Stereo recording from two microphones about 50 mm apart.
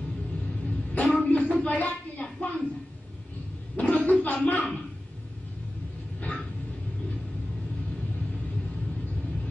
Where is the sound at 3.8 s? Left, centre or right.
Left.